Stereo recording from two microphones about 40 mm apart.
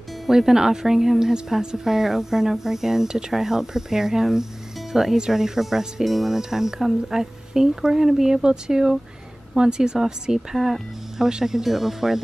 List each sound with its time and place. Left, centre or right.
0.3 s a woman's voice: centre
10.5 s speech: centre
11.1 s speech: centre